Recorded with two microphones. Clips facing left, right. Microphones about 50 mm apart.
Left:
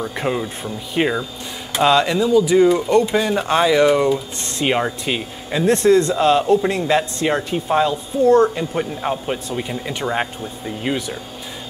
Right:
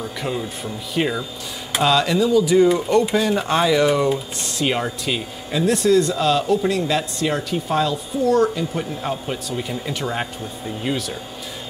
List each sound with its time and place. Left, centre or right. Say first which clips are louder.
0.2 s a woman's voice: left 3 dB; left
5.7 s a woman's voice: left 3 dB; left; by 11.1 s centre